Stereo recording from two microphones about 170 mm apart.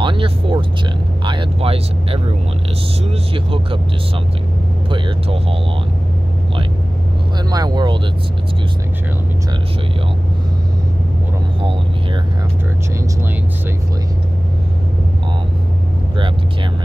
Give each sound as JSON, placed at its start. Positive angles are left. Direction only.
{"t": 0.0, "sound": "speech", "side_deg": -30}
{"t": 4.8, "sound": "speech", "side_deg": -30}
{"t": 7.5, "sound": "speech", "side_deg": -25}